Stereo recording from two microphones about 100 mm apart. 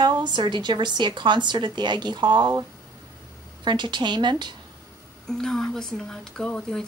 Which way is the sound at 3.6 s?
50° right (ahead or behind).